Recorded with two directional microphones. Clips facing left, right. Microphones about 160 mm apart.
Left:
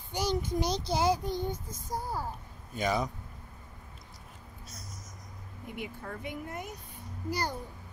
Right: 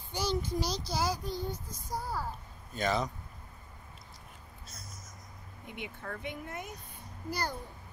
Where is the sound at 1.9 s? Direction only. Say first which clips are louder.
Left 1 dB; 15° left (ahead or behind).